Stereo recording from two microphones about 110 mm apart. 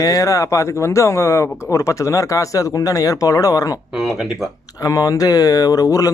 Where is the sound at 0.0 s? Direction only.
30° left (ahead or behind).